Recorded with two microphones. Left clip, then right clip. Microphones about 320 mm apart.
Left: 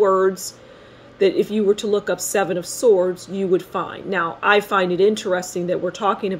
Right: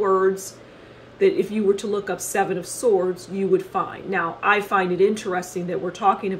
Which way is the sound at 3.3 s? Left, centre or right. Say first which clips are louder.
Even; left.